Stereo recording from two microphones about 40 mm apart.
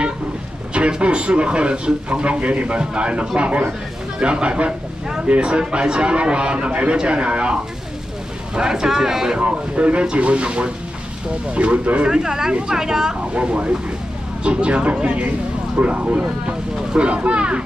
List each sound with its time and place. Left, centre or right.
0.7 s a man's voice: right
8.5 s speech: centre
9.4 s a man's voice: right
12.1 s speech: centre
13.3 s a man's voice: right